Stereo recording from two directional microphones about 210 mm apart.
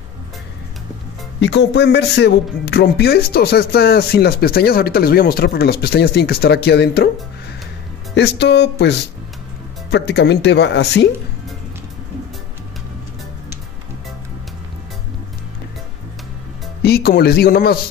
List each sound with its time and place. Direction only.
1.4 s speech: 55° left (ahead or behind)
8.1 s speech: 55° left (ahead or behind)
16.8 s speech: 50° left (ahead or behind)